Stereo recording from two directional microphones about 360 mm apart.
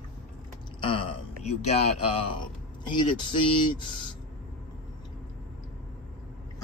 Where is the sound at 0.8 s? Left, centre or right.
Centre.